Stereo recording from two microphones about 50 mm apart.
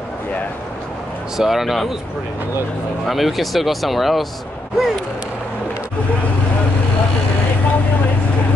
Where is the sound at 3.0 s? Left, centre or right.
Centre.